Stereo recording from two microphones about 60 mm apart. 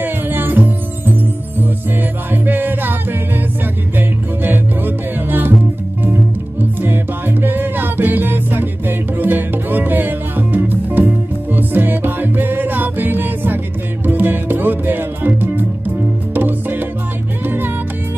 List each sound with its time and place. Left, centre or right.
0.0 s music: right
2.3 s music: right
4.4 s music: right
6.8 s music: right